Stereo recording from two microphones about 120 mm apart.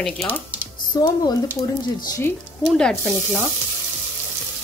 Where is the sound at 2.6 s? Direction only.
5° left (ahead or behind).